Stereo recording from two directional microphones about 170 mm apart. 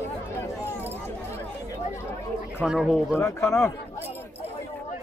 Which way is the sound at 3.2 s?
15° left (ahead or behind).